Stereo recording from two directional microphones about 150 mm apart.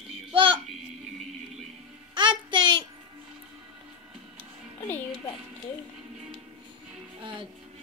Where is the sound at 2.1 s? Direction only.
30° right (ahead or behind).